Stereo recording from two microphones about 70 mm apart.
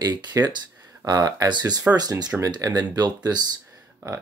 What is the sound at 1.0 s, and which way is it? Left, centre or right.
Speech, right.